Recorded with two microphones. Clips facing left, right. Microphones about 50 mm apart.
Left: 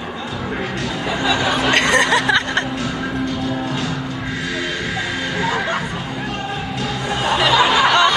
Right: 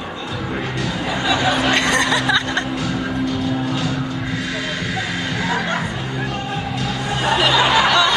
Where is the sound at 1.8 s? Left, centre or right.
Left.